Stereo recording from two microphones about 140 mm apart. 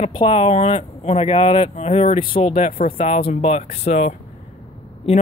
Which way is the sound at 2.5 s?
75° left (ahead or behind).